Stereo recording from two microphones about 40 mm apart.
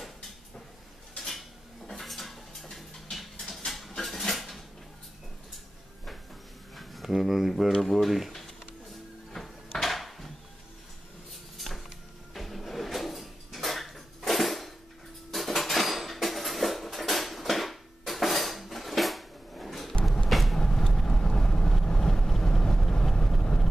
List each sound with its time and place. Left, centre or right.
1.1 s cutlery: centre
1.9 s mechanisms: centre
4.0 s dishes: centre
6.7 s speech: centre
9.8 s a sound: centre
11.5 s a sound: centre
12.4 s drawer open or close: centre
15.3 s dishes: centre
20.2 s vehicle: centre
20.5 s boat: centre
23.3 s vehicle: centre